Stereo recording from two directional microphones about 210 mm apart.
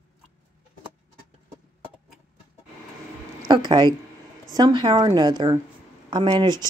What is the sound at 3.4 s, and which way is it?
A woman's voice, 20° right (ahead or behind).